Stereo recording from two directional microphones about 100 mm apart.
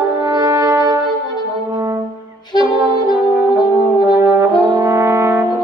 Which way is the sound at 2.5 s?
45° left (ahead or behind).